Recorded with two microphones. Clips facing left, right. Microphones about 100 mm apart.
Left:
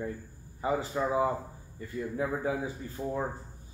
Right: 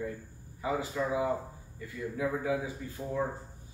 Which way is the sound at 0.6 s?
35° left (ahead or behind).